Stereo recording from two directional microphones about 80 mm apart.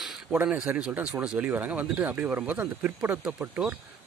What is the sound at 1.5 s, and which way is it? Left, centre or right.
Speech, right.